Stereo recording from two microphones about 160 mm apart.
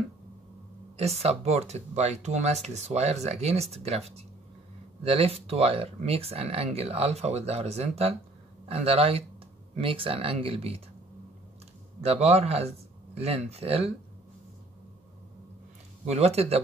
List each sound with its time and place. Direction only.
0.9 s speech: 40° right (ahead or behind)
12.0 s speech: 40° right (ahead or behind)
16.1 s speech: 40° right (ahead or behind)